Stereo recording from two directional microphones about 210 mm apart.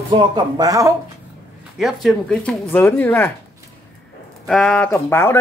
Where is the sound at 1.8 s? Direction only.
Centre (ahead or behind).